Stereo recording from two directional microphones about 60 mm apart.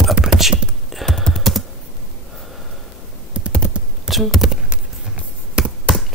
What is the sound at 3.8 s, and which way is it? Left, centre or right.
Computer keyboard, centre.